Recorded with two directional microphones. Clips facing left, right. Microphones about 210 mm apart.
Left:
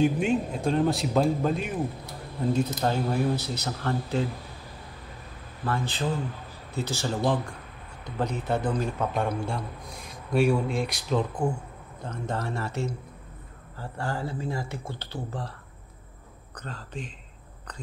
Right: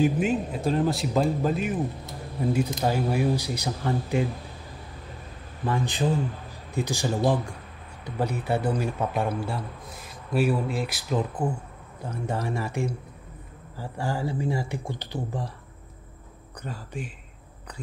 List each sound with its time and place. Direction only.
0.0 s a man's voice: 5° right (ahead or behind)
2.8 s speech: 10° right (ahead or behind)
5.7 s a man's voice: 15° right (ahead or behind)
16.6 s speech: 10° right (ahead or behind)